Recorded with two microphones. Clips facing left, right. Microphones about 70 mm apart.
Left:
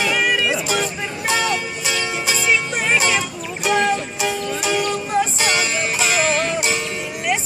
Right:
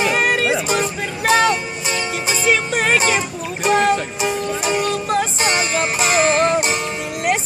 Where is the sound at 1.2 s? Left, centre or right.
Right.